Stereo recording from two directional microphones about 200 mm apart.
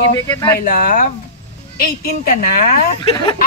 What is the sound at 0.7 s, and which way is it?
Female singing, 40° left (ahead or behind).